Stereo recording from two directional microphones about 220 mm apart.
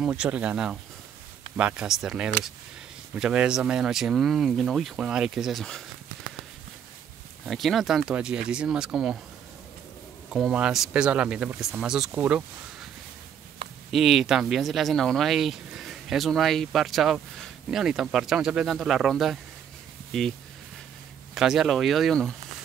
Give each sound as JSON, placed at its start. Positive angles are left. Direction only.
{"t": 0.0, "sound": "speech", "side_deg": -5}
{"t": 7.4, "sound": "speech", "side_deg": 0}
{"t": 10.3, "sound": "speech", "side_deg": -5}
{"t": 13.6, "sound": "a sound", "side_deg": -25}
{"t": 13.9, "sound": "speech", "side_deg": 0}
{"t": 21.4, "sound": "speech", "side_deg": 0}